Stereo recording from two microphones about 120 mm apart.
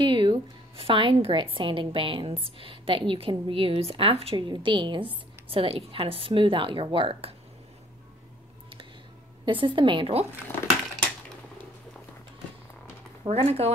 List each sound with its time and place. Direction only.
0.0 s a woman's voice: 40° right (ahead or behind)
9.5 s a woman's voice: 45° right (ahead or behind)
13.3 s speech: 60° right (ahead or behind)